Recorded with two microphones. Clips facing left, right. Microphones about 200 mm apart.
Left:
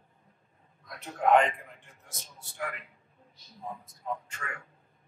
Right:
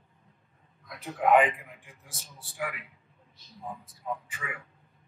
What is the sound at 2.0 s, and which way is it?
Speech, 30° right (ahead or behind).